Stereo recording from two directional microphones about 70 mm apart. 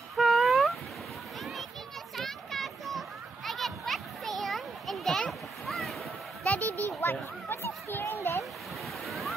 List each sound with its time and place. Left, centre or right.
0.1 s cat: centre
1.4 s children playing: centre
5.7 s waves: centre
6.4 s a sound: centre
7.0 s a sound: left
9.0 s waves: centre